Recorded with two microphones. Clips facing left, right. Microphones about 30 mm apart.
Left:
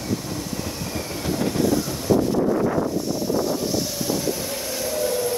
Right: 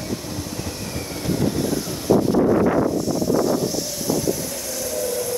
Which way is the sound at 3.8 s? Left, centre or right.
Centre.